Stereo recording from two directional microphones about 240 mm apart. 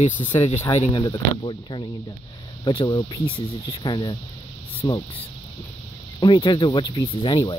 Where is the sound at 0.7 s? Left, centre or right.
Left.